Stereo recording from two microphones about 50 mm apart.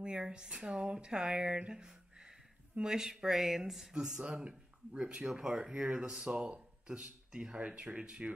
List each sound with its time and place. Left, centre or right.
0.0 s speech: centre
4.2 s speech: right